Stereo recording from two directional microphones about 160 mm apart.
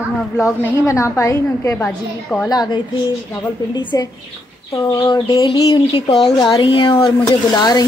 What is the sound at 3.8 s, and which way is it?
Speech, 30° left (ahead or behind).